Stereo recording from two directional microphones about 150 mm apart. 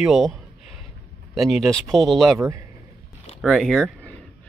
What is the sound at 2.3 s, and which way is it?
Speech, 20° right (ahead or behind).